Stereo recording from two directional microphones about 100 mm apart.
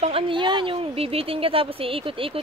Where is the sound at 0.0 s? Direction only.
65° right (ahead or behind).